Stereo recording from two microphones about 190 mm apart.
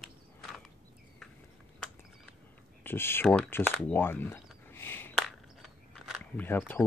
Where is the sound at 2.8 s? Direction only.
10° left (ahead or behind).